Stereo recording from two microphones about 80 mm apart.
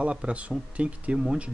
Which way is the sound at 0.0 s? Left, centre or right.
Centre.